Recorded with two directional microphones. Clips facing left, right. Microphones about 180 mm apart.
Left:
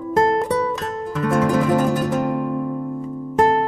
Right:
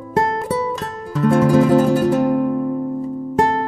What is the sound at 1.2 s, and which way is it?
Music, 30° right (ahead or behind).